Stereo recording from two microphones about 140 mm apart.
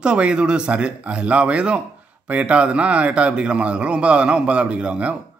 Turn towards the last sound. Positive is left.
turn(degrees=-10)  # may be behind; listen again after turning